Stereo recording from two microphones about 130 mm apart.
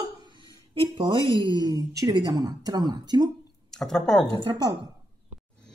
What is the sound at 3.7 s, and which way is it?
Speech, 5° left (ahead or behind).